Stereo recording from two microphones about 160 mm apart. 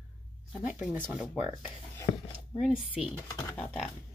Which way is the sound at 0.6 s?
10° right (ahead or behind).